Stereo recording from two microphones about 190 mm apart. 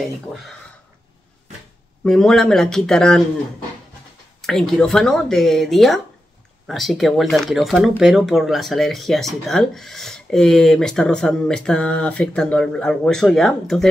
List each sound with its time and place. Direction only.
2.0 s speech: 5° left (ahead or behind)
4.4 s speech: centre (ahead or behind)